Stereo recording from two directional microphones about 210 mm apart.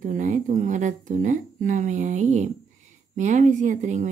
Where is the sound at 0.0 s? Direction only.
35° right (ahead or behind).